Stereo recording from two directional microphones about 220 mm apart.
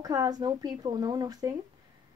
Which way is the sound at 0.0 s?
15° right (ahead or behind).